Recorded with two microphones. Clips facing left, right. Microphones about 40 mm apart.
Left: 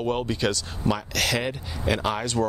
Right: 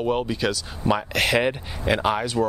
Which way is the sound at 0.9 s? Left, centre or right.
Right.